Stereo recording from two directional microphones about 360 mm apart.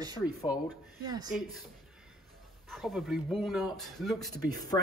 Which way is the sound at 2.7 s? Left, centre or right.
Centre.